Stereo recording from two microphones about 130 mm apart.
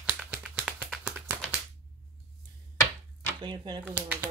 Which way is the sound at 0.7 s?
10° right (ahead or behind).